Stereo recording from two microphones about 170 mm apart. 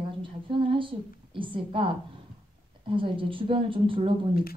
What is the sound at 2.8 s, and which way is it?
Speech, 30° right (ahead or behind).